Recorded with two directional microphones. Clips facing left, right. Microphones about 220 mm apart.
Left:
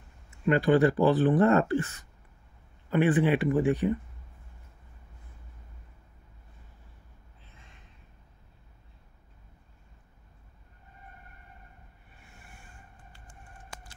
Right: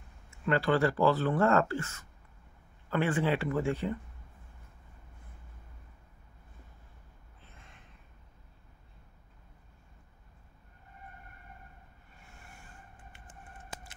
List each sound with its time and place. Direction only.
0.5 s speech: 15° left (ahead or behind)